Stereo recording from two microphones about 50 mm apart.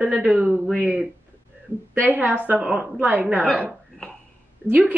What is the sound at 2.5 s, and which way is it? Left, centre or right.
Speech, centre.